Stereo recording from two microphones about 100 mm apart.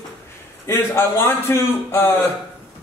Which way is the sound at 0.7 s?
25° left (ahead or behind).